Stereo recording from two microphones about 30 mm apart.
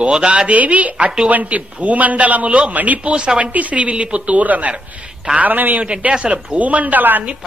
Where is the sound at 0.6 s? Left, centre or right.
Right.